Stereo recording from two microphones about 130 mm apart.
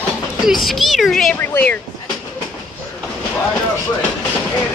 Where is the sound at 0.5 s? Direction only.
Centre (ahead or behind).